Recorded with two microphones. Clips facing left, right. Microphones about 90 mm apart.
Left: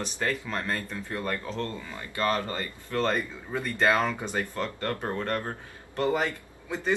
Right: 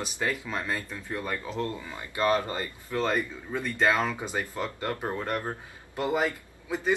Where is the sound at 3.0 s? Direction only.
5° right (ahead or behind).